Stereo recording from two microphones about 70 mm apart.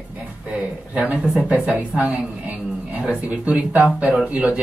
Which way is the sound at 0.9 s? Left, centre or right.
Right.